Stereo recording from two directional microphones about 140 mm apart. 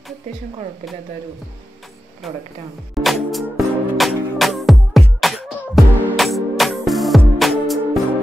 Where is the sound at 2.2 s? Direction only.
Centre (ahead or behind).